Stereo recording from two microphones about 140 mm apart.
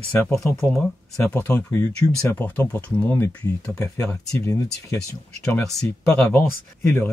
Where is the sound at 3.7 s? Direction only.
20° left (ahead or behind).